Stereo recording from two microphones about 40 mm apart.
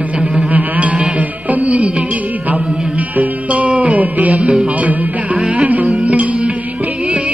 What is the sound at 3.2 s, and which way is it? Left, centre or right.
Music, right.